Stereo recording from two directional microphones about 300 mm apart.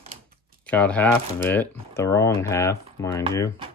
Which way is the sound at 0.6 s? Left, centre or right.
Centre.